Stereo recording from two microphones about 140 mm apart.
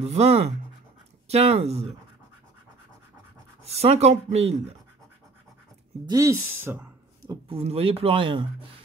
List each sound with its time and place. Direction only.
0.0 s speech: 50° right (ahead or behind)
3.6 s speech: 45° right (ahead or behind)
6.0 s speech: 25° right (ahead or behind)
7.2 s speech: 40° right (ahead or behind)